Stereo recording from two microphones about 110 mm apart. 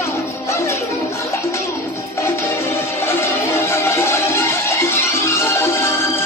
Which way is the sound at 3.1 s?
25° left (ahead or behind).